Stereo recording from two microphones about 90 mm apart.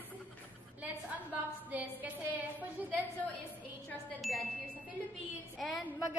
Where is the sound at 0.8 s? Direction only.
15° right (ahead or behind).